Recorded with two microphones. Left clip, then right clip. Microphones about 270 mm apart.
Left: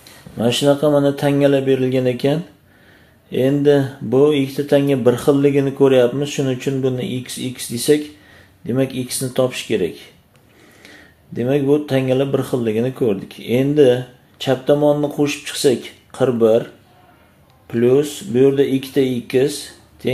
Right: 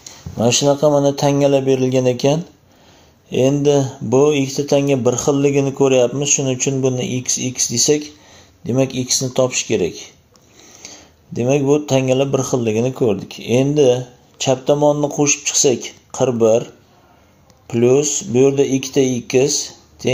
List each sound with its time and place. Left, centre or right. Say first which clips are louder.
0.0 s a sound: right 2 dB; centre
0.7 s speech: right 1 dB; centre
17.6 s speech: right 1 dB; centre